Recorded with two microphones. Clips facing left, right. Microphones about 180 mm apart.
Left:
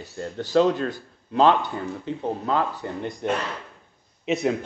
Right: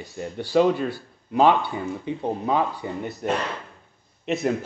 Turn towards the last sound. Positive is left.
turn(degrees=0)  # may be behind; listen again after turning